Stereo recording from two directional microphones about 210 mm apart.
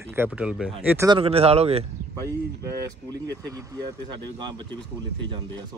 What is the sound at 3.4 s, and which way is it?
Speech, 20° right (ahead or behind).